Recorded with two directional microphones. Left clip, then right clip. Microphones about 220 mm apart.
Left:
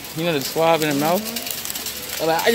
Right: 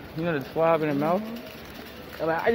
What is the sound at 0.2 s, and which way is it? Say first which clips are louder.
Speech: left 5 dB; 35° left (ahead or behind).